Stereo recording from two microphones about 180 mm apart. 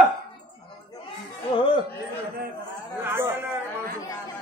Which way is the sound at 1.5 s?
25° left (ahead or behind).